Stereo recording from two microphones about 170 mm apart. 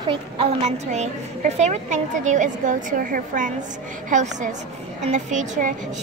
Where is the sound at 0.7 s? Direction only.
45° right (ahead or behind).